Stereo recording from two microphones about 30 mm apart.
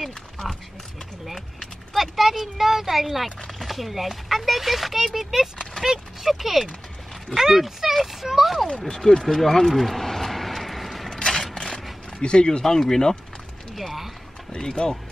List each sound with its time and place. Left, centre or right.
2.0 s speech: centre
8.6 s speech: left
9.3 s a sound: centre
11.1 s a sound: centre
12.2 s speech: left
12.6 s speech: centre
14.6 s speech: left